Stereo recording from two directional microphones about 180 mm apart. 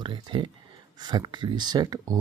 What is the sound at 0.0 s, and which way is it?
Speech, 25° right (ahead or behind).